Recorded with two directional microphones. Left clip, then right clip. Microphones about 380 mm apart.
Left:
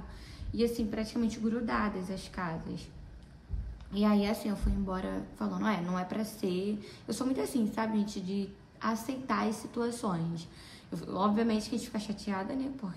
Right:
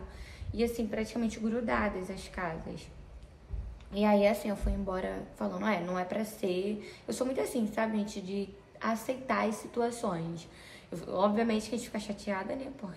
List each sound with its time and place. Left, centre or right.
0.6 s a woman's voice: centre
3.9 s a woman's voice: centre